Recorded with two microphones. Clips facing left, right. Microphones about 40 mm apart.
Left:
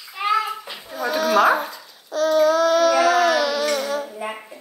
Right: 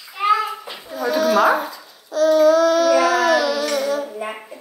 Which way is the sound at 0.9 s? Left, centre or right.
Left.